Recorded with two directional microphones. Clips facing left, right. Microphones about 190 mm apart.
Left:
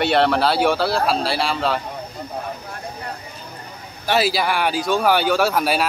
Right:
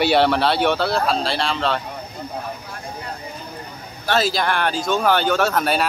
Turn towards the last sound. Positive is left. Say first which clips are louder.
# left 1 dB
turn(degrees=5)  # may be behind; listen again after turning